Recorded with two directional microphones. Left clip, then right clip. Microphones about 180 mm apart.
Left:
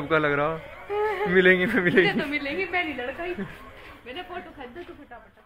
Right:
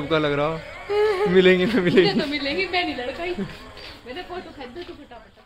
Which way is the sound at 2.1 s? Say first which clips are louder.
Right 3 dB; 25° right (ahead or behind).